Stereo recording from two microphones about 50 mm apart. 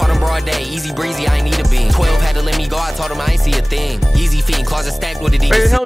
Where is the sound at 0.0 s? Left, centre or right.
Centre.